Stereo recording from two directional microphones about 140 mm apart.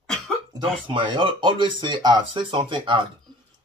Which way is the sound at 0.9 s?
35° right (ahead or behind).